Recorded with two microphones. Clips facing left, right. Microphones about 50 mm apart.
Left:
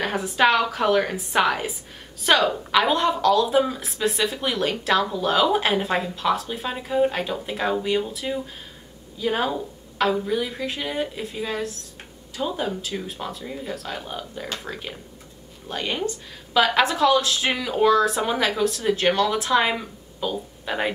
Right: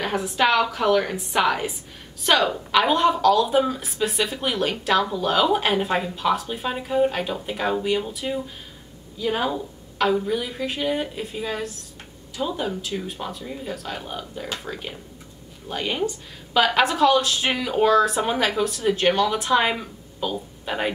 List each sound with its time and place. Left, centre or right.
0.0 s speech: centre